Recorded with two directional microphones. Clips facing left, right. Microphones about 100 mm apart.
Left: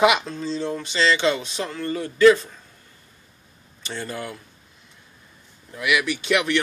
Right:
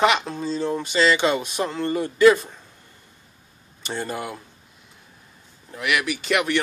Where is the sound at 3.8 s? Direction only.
15° right (ahead or behind).